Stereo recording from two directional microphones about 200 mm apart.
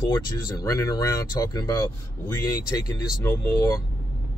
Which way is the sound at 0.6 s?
15° left (ahead or behind).